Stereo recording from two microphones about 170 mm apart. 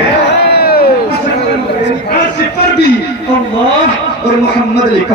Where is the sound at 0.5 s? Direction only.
65° left (ahead or behind).